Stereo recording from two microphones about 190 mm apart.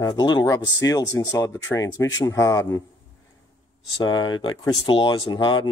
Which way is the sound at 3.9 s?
20° left (ahead or behind).